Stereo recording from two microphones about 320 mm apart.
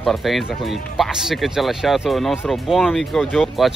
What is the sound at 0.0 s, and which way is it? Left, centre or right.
Speech, centre.